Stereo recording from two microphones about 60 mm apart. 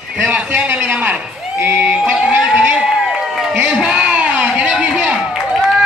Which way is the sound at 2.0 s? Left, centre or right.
Centre.